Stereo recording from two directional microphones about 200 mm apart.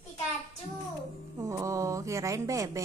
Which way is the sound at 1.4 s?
15° right (ahead or behind).